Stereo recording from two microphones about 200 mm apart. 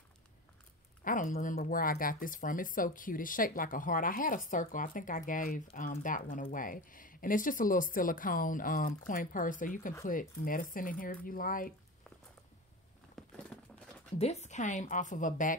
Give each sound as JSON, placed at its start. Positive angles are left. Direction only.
{"t": 1.0, "sound": "speech", "side_deg": 40}
{"t": 13.2, "sound": "a sound", "side_deg": 0}
{"t": 14.1, "sound": "a woman's voice", "side_deg": 35}